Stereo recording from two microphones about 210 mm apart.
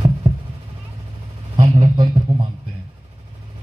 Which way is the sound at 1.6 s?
25° right (ahead or behind).